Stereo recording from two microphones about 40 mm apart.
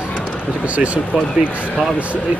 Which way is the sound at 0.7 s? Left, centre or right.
Right.